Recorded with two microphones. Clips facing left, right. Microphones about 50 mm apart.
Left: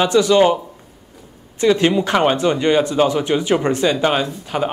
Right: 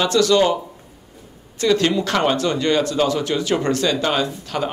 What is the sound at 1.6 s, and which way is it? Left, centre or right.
Speech, left.